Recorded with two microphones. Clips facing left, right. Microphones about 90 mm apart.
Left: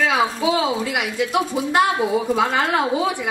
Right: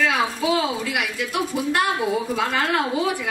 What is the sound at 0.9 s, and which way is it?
Speech, 20° left (ahead or behind).